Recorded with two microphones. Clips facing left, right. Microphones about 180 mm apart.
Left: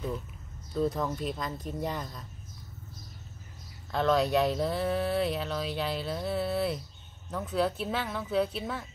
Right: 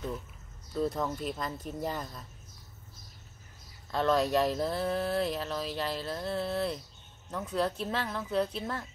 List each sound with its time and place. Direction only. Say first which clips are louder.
0.7 s speech: left 2 dB; centre (ahead or behind)
3.9 s speech: left 1 dB; centre (ahead or behind)